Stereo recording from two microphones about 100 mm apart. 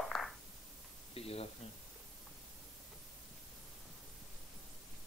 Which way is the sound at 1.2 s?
85° left.